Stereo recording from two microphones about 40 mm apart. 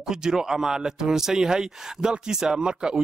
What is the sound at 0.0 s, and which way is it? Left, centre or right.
Speech, centre.